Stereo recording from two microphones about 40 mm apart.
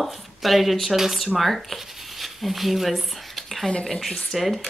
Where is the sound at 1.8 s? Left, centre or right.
Centre.